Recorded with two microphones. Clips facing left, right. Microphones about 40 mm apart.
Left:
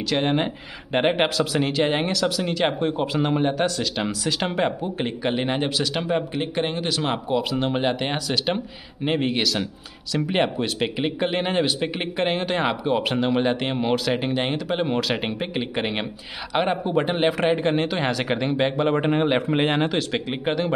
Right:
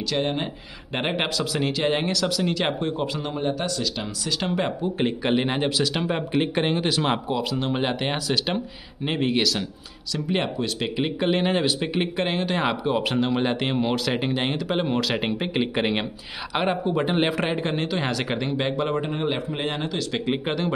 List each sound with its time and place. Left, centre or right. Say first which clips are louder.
0.1 s speech: left 4 dB; left
0.9 s speech: left 5 dB; centre
3.2 s speech: left 5 dB; left
4.9 s speech: right 2 dB; centre
7.2 s speech: left 2 dB; centre
10.1 s speech: left 3 dB; left; by 16.1 s centre
16.8 s speech: left 1 dB; centre
18.9 s speech: left 5 dB; left
20.4 s speech: left 2 dB; centre